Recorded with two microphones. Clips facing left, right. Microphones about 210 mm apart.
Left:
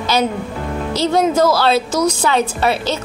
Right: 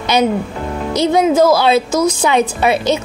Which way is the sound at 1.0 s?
10° right (ahead or behind).